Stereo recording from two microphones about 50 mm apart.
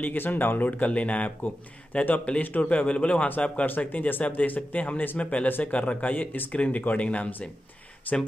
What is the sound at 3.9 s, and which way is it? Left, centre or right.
Speech, left.